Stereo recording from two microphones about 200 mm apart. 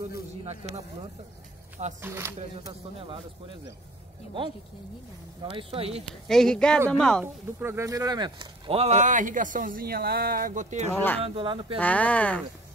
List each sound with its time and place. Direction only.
2.0 s speech: 10° right (ahead or behind)
2.3 s speech: 30° right (ahead or behind)
5.4 s speech: 25° right (ahead or behind)
6.2 s speech: centre (ahead or behind)
7.6 s speech: 15° right (ahead or behind); by 10.9 s 40° right (ahead or behind)
11.2 s speech: 25° right (ahead or behind)
11.8 s speech: 5° left (ahead or behind)